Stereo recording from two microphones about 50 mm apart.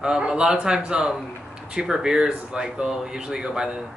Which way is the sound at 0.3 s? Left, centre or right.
Centre.